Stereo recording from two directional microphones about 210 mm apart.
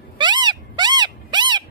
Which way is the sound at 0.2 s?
20° right (ahead or behind).